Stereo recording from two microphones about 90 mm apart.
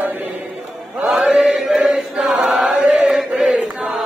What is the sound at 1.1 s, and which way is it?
Chant, 5° right (ahead or behind).